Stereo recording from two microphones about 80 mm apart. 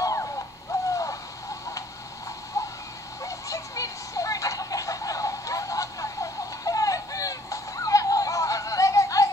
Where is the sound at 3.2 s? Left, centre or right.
Left.